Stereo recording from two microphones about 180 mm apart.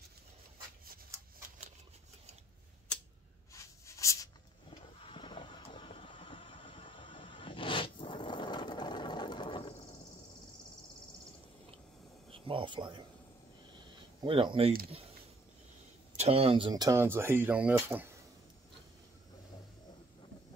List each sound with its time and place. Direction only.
3.5 s writing: 15° left (ahead or behind)
4.6 s vehicle: 30° left (ahead or behind)
12.4 s a sound: 25° right (ahead or behind)
14.2 s speech: 30° right (ahead or behind)
16.2 s speech: 35° right (ahead or behind); by 18.1 s 10° right (ahead or behind)